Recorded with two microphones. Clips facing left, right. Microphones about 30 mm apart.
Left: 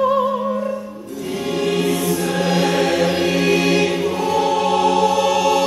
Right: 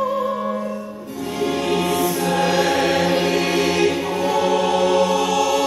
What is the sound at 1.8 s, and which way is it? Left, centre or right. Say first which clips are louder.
Choir: left 1 dB; centre.